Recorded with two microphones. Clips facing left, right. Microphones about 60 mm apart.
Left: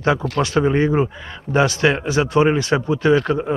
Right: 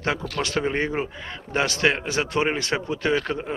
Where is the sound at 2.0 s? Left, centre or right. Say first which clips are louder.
Left 7 dB; left.